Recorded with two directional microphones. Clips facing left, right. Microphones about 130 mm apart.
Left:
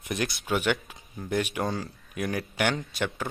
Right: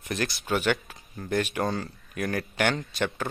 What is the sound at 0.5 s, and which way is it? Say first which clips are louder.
Speech: right 1 dB; 10° left (ahead or behind).